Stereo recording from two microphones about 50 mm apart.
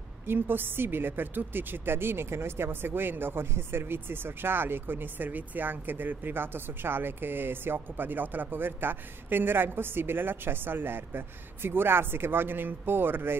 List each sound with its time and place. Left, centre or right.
0.3 s speech: right